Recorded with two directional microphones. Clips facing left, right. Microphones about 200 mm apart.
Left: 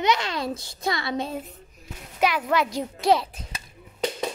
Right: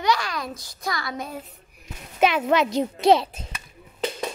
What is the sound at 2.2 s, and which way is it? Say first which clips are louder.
A child's voice: right 3 dB; 25° right (ahead or behind).